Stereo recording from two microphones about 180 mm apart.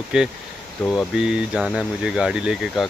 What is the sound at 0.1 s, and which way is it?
Speech, 5° right (ahead or behind).